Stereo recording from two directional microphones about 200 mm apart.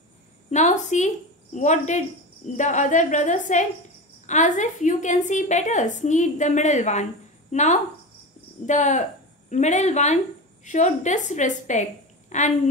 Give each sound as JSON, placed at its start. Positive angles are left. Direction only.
{"t": 0.5, "sound": "a woman's voice", "side_deg": 35}